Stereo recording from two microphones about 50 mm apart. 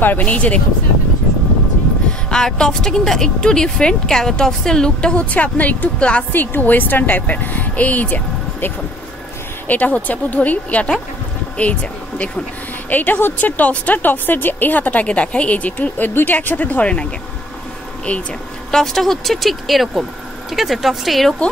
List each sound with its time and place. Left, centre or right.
0.0 s speech: left
2.2 s a woman's voice: centre; by 5.9 s left
5.9 s speech: left
6.3 s a woman's voice: left
12.9 s a woman's voice: left
18.7 s speech: centre